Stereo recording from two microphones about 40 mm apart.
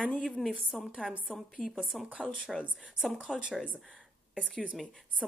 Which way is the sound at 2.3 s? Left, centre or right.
Centre.